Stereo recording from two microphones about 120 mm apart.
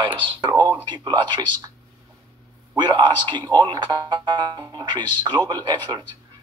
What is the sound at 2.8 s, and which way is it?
Speech, 40° right (ahead or behind).